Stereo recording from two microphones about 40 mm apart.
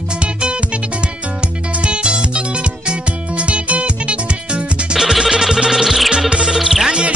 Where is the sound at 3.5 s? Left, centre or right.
Right.